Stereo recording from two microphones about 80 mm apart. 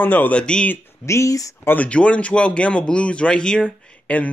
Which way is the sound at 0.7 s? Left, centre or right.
Left.